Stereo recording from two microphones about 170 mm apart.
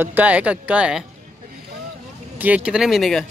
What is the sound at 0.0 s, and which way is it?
Speech, 10° right (ahead or behind).